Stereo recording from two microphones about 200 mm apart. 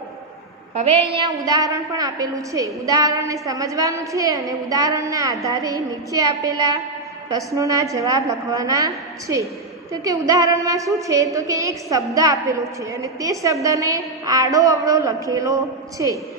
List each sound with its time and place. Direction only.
1.2 s a woman's voice: 20° right (ahead or behind)